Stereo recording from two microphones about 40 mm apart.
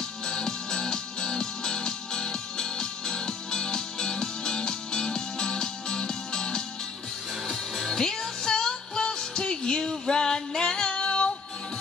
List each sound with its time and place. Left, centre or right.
0.3 s music: centre
7.8 s music: centre; by 11.3 s left